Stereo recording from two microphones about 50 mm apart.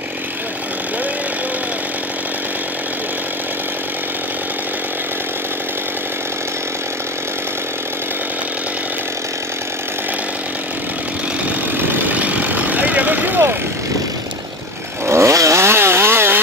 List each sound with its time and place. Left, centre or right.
11.9 s vehicle: right
15.0 s chainsaw: right